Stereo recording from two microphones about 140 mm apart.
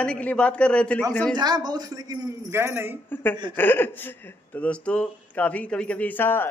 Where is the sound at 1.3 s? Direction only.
30° right (ahead or behind).